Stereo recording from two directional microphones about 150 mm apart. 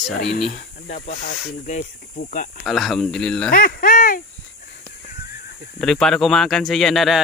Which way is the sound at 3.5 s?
75° left (ahead or behind).